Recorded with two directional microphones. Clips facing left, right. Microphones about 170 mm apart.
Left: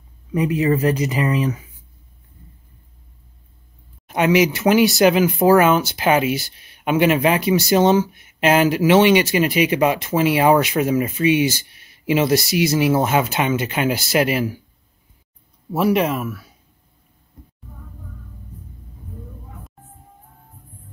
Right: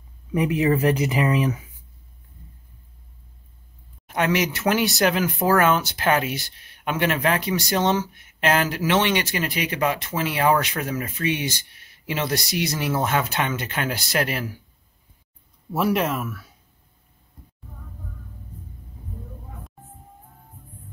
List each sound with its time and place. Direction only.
0.3 s speech: 15° right (ahead or behind)
4.1 s speech: 5° left (ahead or behind)
15.7 s speech: 5° left (ahead or behind)